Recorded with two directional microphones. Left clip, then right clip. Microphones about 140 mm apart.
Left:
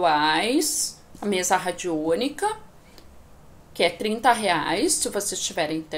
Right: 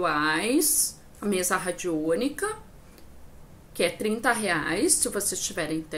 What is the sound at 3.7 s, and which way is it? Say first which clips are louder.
A woman's voice: left 3 dB; 40° right (ahead or behind).